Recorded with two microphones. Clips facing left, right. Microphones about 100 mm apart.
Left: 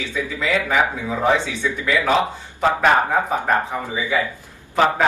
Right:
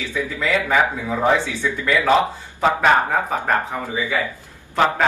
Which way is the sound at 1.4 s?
20° left (ahead or behind).